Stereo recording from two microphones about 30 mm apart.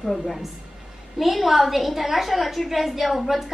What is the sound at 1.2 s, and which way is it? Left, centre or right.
A woman's voice, centre.